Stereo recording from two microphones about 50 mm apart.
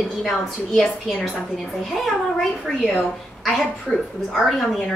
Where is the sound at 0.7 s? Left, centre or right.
Centre.